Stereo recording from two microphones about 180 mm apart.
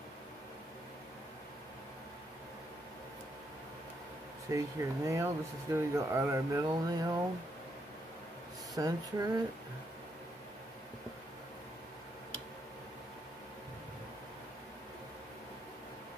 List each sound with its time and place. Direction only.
4.5 s speech: 15° right (ahead or behind)
8.7 s speech: 20° right (ahead or behind)